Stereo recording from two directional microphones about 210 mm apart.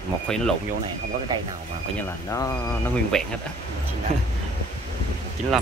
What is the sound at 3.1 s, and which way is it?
Speech, centre (ahead or behind).